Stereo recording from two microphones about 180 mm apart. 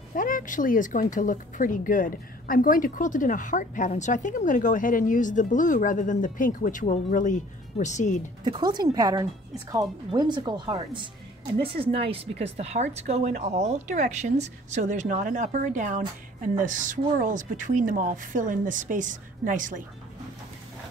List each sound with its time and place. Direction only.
0.1 s speech: 50° left (ahead or behind)
8.5 s speech: 25° right (ahead or behind); by 19.8 s 45° right (ahead or behind)